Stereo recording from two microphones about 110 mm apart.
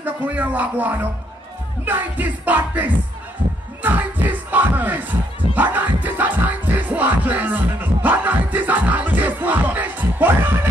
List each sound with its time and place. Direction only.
0.0 s music: 15° right (ahead or behind)